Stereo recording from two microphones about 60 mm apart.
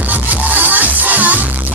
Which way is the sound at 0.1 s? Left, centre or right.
Right.